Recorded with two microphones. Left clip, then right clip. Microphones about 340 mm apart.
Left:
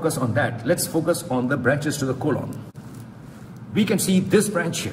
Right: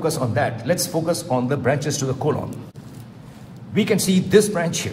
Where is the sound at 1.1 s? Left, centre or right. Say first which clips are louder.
Right 1 dB; right.